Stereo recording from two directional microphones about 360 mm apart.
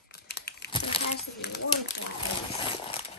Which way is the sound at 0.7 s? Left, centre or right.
Centre.